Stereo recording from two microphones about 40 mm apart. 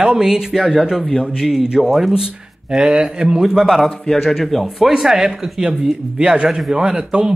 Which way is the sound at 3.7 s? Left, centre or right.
Centre.